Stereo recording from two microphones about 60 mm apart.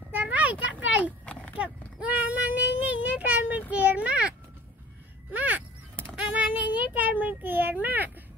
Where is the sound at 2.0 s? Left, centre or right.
Right.